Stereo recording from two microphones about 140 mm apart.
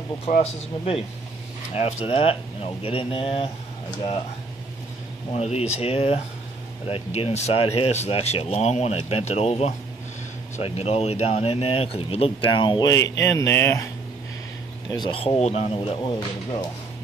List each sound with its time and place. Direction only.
0.3 s speech: 60° left (ahead or behind)
2.0 s speech: 45° left (ahead or behind)
5.3 s speech: 50° left (ahead or behind); by 13.8 s 20° left (ahead or behind)
14.9 s speech: 35° left (ahead or behind)
16.0 s speech: 30° left (ahead or behind)